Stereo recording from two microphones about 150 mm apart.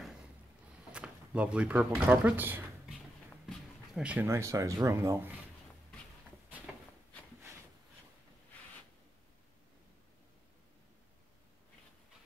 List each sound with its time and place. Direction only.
0.9 s speech: 5° right (ahead or behind)